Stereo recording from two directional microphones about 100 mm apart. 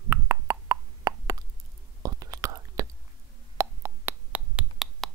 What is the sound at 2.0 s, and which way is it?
Whispering, 40° right (ahead or behind).